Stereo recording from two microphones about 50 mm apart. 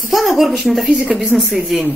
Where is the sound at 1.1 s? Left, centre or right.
Right.